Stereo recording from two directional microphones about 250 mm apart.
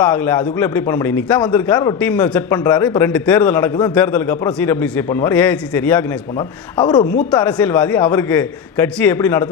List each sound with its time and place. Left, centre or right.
0.0 s a man's voice: centre